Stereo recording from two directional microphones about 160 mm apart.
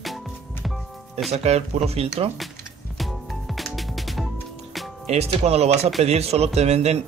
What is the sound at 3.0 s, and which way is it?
Music, centre (ahead or behind).